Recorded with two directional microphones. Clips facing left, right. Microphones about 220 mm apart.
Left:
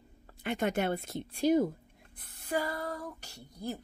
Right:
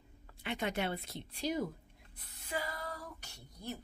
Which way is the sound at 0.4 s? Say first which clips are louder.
Left 6 dB; 45° left (ahead or behind).